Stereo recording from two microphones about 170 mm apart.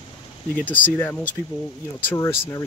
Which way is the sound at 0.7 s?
10° left (ahead or behind).